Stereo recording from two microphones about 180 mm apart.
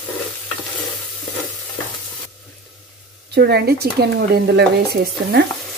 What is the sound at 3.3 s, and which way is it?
Speech, 65° right (ahead or behind).